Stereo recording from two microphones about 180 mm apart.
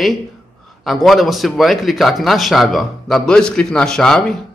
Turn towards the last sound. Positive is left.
turn(degrees=5)  # may be behind; listen again after turning